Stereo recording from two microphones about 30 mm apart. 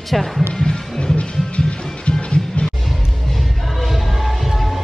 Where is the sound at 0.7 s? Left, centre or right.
Left.